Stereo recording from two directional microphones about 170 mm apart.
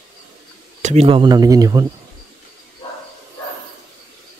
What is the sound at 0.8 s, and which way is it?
Speech, 35° right (ahead or behind).